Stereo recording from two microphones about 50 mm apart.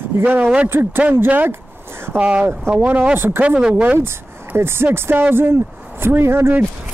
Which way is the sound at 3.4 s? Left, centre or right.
Right.